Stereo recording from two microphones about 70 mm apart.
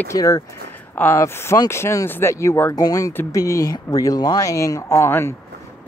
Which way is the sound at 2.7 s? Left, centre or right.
Left.